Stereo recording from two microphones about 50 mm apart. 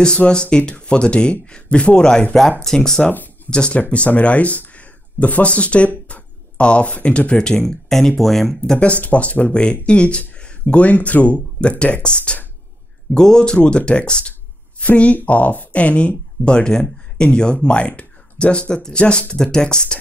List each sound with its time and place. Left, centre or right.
0.2 s speech: centre
8.7 s speech: left